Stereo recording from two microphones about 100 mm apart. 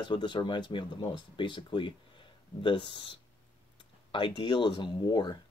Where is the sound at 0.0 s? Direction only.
50° left (ahead or behind).